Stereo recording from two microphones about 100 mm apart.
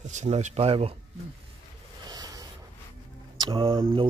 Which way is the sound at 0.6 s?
85° right.